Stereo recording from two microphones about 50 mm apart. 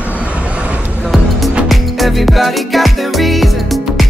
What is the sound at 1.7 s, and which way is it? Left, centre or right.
Music, centre.